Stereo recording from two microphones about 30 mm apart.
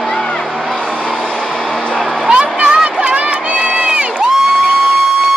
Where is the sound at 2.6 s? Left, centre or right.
Right.